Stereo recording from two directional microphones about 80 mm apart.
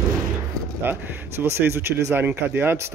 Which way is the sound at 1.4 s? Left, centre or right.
Right.